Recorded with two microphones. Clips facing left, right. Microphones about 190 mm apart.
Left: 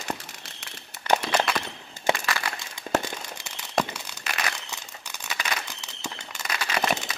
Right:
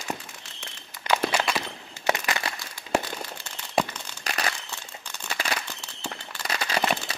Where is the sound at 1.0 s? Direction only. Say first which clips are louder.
Left 1 dB; 15° right (ahead or behind).